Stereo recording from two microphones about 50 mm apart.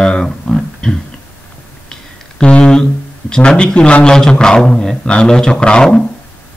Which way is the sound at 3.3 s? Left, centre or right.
Centre.